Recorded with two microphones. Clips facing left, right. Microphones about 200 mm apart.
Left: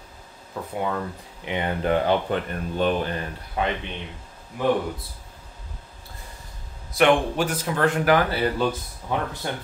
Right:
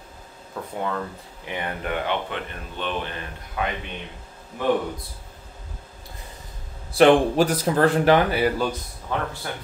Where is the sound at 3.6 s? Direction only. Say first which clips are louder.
Left 2 dB; 30° left (ahead or behind).